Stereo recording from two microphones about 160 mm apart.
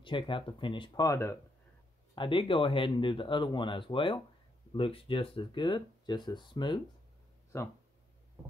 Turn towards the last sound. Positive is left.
turn(degrees=15)  # may be behind; listen again after turning